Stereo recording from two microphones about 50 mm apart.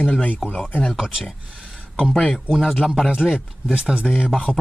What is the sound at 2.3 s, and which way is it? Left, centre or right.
Speech, centre.